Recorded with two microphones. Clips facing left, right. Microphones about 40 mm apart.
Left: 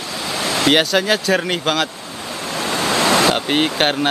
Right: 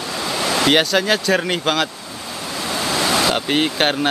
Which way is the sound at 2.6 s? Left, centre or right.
Left.